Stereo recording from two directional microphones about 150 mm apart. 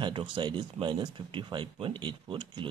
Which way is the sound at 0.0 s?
35° right (ahead or behind).